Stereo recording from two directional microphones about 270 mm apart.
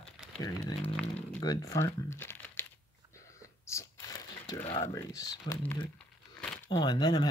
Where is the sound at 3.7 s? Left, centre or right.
Centre.